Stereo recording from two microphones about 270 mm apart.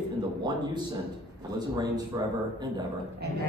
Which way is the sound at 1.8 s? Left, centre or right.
Centre.